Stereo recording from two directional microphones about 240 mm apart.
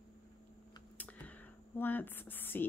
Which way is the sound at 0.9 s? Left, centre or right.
Centre.